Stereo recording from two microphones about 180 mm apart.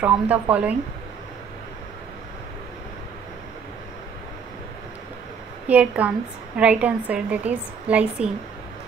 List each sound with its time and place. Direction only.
0.0 s a woman's voice: 10° right (ahead or behind)
5.7 s a woman's voice: 5° right (ahead or behind)